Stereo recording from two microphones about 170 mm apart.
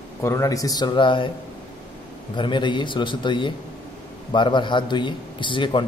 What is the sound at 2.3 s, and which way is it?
A man's voice, 30° left (ahead or behind).